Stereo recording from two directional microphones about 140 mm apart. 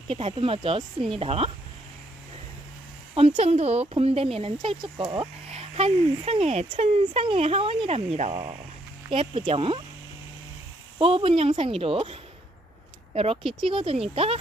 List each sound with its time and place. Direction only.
0.1 s speech: 40° right (ahead or behind)
3.3 s speech: 50° right (ahead or behind)
11.0 s speech: 40° right (ahead or behind)
13.4 s speech: centre (ahead or behind)
13.7 s speech: 40° right (ahead or behind)